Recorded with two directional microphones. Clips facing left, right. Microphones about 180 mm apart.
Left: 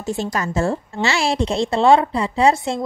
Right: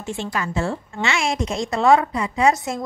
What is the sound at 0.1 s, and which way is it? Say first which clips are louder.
A woman's voice: left 3 dB; 40° left (ahead or behind).